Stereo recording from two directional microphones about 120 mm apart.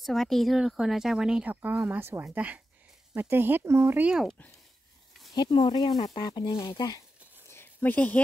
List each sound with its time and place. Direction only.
0.0 s speech: centre (ahead or behind); by 4.1 s 20° right (ahead or behind)
4.1 s speech: centre (ahead or behind)
5.3 s speech: 35° left (ahead or behind)
7.4 s a sound: 20° left (ahead or behind)